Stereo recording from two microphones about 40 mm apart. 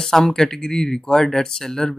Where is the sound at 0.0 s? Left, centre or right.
Centre.